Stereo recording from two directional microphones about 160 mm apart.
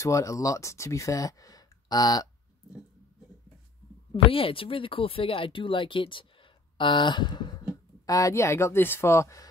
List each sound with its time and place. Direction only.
0.0 s speech: 20° left (ahead or behind)
4.1 s speech: 35° left (ahead or behind); by 9.5 s 20° left (ahead or behind)